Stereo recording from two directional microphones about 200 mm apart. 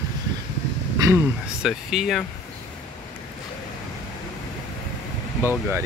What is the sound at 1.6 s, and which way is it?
Speech, centre (ahead or behind).